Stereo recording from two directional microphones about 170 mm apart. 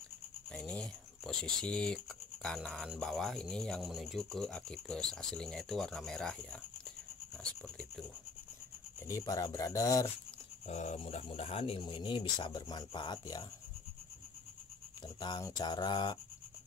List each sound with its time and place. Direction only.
0.5 s speech: 5° left (ahead or behind)
7.6 s writing: 5° left (ahead or behind)
9.0 s speech: 20° left (ahead or behind)
10.7 s speech: 40° left (ahead or behind); by 13.5 s 25° left (ahead or behind)
15.1 s speech: 25° left (ahead or behind)